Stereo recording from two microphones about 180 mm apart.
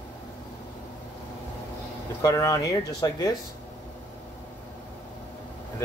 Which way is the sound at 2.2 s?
15° left (ahead or behind).